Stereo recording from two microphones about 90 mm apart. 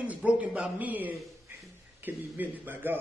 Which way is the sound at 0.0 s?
15° right (ahead or behind).